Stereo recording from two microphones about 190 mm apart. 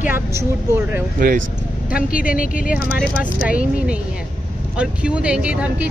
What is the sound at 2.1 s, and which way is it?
Speech, 45° left (ahead or behind).